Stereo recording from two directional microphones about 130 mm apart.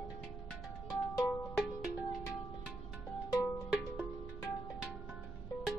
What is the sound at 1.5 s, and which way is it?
Music, 5° right (ahead or behind).